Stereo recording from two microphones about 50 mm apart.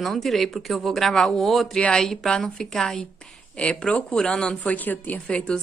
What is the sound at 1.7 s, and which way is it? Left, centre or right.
A woman's voice, centre.